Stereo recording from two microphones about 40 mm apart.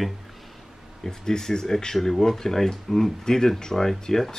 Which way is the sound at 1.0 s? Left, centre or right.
Centre.